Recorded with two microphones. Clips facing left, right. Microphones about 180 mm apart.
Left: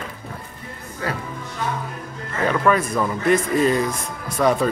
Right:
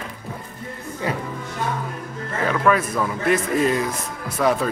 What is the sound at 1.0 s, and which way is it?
Speech, 20° right (ahead or behind).